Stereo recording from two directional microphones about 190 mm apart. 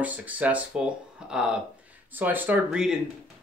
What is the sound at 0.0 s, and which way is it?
Speech, 10° right (ahead or behind).